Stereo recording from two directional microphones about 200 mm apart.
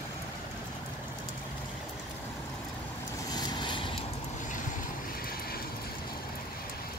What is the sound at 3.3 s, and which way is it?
Boat, 20° left (ahead or behind).